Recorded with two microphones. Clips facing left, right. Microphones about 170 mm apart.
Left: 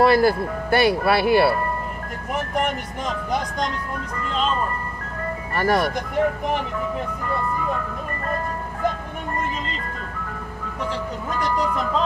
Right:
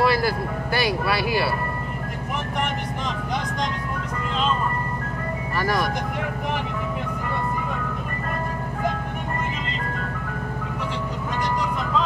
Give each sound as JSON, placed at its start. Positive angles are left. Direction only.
{"t": 0.0, "sound": "speech", "side_deg": 50}
{"t": 5.6, "sound": "speech", "side_deg": 55}